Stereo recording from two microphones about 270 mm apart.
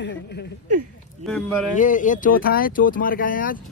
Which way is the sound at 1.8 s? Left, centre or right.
Left.